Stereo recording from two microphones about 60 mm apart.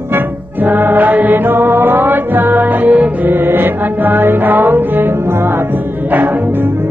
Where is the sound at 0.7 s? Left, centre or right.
Right.